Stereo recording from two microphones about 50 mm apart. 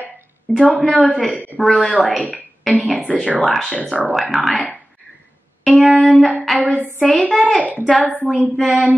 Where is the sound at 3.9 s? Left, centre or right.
Centre.